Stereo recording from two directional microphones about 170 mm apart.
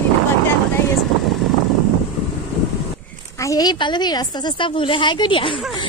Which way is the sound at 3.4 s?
20° left (ahead or behind).